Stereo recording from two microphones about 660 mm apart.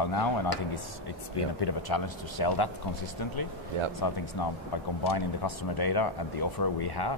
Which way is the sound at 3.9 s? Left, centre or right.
Left.